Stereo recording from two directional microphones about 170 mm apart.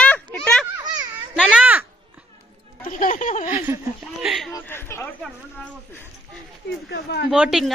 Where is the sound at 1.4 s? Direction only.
5° right (ahead or behind).